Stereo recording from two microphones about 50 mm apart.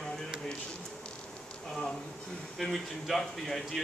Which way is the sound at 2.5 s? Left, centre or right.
Centre.